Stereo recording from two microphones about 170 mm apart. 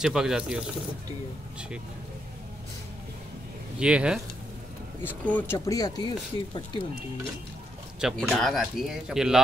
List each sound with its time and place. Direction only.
0.0 s speech: 5° right (ahead or behind)
3.8 s speech: 5° right (ahead or behind)
5.0 s speech: 10° left (ahead or behind)
5.7 s speech: 20° left (ahead or behind)
8.0 s speech: centre (ahead or behind)